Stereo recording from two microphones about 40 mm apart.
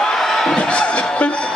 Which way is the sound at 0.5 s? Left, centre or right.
Left.